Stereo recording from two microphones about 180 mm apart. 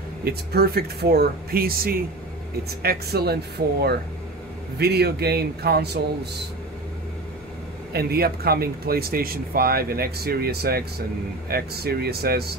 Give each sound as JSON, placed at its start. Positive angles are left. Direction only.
{"t": 0.2, "sound": "speech", "side_deg": -60}
{"t": 7.9, "sound": "speech", "side_deg": -60}